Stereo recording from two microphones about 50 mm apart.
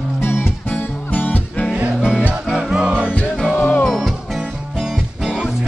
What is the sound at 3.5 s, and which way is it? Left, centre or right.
Music, left.